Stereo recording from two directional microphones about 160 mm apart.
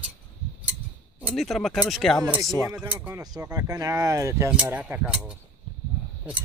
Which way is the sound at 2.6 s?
15° right (ahead or behind).